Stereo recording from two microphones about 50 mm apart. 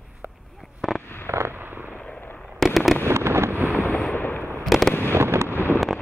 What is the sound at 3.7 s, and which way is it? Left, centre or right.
Boat, left.